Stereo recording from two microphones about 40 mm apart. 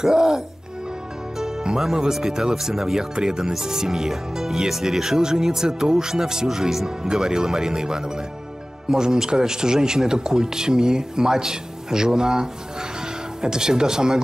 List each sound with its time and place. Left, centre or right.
0.0 s speech: centre
1.4 s music: centre
1.8 s speech: centre